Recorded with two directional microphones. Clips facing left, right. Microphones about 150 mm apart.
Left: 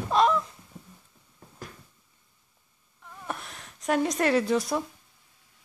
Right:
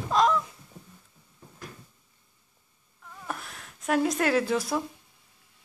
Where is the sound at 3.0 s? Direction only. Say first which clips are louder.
Left 1 dB; centre (ahead or behind).